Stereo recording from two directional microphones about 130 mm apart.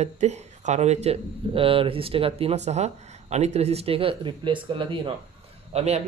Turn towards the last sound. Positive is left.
turn(degrees=-55)  # may be behind; listen again after turning